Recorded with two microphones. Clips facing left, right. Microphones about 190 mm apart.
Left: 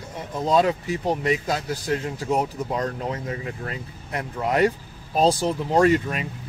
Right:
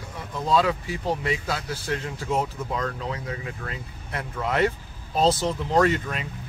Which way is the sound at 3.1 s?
35° left (ahead or behind).